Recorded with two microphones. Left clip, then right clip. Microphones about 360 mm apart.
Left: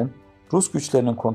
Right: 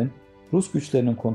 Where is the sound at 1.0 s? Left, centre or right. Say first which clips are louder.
Left 3 dB; left.